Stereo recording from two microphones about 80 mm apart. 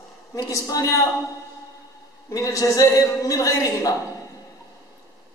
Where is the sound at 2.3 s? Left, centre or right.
Left.